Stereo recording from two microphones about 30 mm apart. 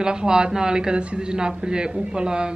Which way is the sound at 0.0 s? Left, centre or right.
Right.